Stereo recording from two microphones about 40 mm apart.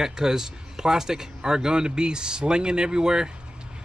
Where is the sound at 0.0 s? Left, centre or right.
Centre.